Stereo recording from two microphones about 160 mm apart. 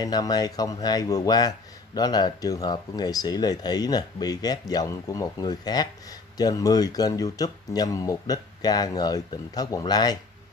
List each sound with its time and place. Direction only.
0.0 s speech: 25° left (ahead or behind)